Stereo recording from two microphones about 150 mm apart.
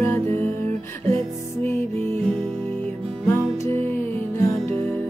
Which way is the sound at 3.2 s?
15° left (ahead or behind).